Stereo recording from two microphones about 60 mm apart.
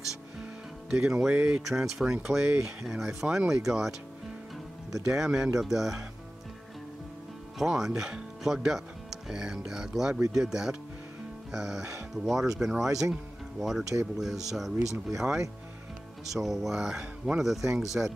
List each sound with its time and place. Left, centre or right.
0.8 s speech: centre
1.7 s speech: centre
5.0 s speech: centre
7.5 s speech: centre